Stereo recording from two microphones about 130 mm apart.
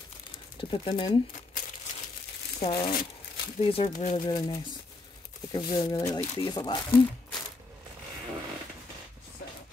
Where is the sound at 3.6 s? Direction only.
45° left (ahead or behind).